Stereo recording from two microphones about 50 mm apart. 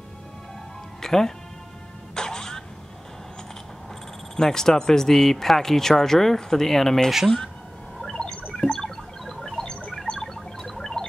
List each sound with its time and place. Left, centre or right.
1.0 s speech: centre
2.1 s music: centre
4.4 s speech: centre
8.0 s a sound: centre